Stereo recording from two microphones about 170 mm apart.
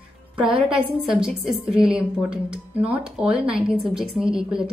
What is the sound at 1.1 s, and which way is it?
A woman's voice, 5° right (ahead or behind).